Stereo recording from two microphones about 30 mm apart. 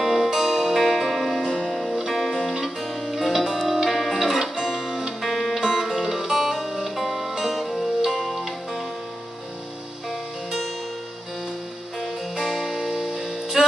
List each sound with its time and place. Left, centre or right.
0.0 s music: centre
4.6 s guitar: centre
5.2 s music: centre
12.4 s music: centre